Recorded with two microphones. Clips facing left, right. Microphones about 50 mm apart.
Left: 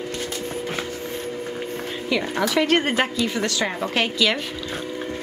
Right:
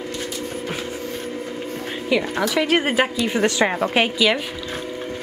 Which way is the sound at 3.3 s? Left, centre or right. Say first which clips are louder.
Right 5 dB; right.